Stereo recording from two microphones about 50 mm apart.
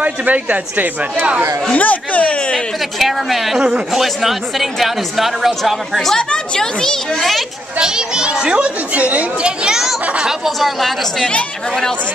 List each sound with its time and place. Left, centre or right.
0.0 s a child's voice: right
1.8 s speech: left
3.0 s a woman's voice: centre
3.5 s a child's voice: right
3.9 s a woman's voice: centre
6.1 s a child's voice: centre
7.8 s a child's voice: centre
10.2 s a woman's voice: centre